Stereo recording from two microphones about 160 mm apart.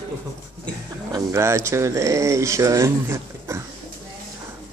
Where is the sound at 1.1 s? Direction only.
20° right (ahead or behind).